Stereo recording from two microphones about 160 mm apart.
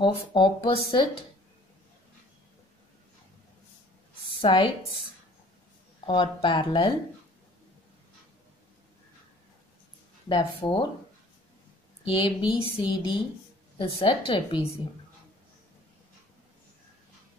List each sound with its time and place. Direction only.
0.0 s speech: 30° left (ahead or behind)
4.4 s speech: 35° left (ahead or behind)
6.0 s speech: 30° left (ahead or behind)
10.2 s speech: 30° left (ahead or behind)
12.0 s speech: 30° left (ahead or behind)